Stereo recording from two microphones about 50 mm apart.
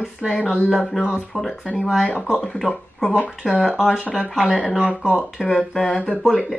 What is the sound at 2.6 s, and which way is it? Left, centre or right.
Speech, centre.